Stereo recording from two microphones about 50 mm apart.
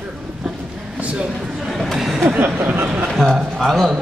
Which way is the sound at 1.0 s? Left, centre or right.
Right.